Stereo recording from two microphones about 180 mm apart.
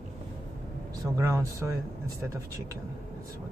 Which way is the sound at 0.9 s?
20° right (ahead or behind).